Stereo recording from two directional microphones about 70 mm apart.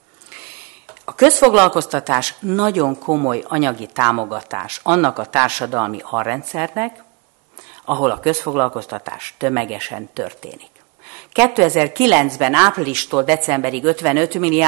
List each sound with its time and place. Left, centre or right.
1.0 s a woman's voice: centre